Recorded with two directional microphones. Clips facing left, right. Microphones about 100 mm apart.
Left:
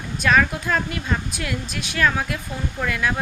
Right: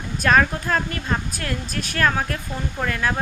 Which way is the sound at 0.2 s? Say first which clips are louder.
Right 1 dB; 40° right (ahead or behind).